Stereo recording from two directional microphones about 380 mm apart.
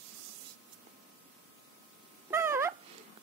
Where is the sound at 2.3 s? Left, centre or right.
Centre.